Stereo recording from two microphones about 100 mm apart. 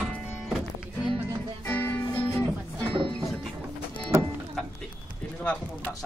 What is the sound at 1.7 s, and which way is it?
Music, 20° left (ahead or behind).